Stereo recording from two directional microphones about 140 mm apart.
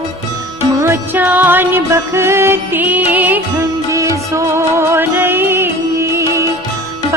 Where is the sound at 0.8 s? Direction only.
15° right (ahead or behind).